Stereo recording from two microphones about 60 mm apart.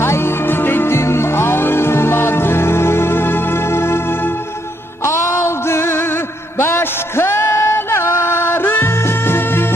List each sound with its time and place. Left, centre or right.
0.0 s music: left